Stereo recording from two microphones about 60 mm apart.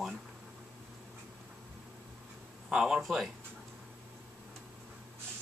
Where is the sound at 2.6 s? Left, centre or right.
Centre.